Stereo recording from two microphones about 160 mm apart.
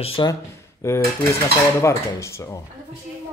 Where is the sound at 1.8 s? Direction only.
15° left (ahead or behind).